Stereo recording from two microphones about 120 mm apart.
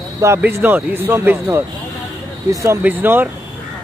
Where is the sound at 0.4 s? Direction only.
15° right (ahead or behind).